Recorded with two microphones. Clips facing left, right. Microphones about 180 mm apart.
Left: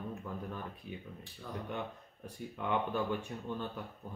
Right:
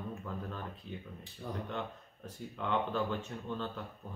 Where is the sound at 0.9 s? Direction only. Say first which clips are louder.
Even; 10° left (ahead or behind).